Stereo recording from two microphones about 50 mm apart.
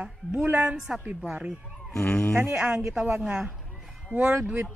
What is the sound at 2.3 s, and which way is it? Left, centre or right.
Speech, right.